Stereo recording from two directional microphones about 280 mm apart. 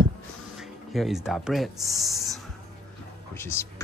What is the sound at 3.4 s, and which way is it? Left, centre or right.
Speech, centre.